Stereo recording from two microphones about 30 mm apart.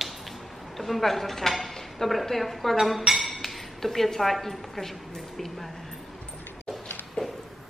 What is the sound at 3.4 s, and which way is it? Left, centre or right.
Speech, centre.